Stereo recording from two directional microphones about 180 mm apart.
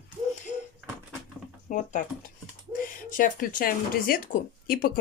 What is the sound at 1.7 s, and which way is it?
Speech, 45° left (ahead or behind).